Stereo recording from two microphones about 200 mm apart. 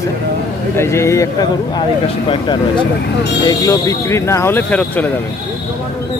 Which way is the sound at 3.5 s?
15° left (ahead or behind).